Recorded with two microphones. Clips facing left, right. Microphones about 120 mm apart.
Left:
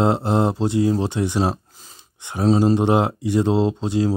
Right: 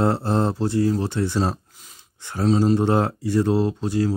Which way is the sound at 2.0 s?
20° left (ahead or behind).